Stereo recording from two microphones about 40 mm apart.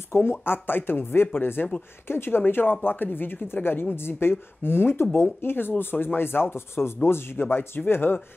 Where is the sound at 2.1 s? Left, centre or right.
Left.